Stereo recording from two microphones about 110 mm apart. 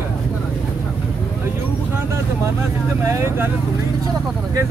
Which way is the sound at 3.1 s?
25° right (ahead or behind).